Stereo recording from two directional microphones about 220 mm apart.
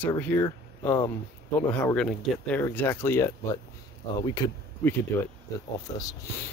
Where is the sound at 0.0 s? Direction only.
10° left (ahead or behind).